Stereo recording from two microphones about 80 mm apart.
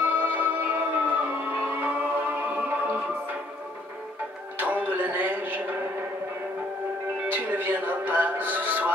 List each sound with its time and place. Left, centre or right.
0.0 s music: right
4.6 s music: right
7.2 s music: right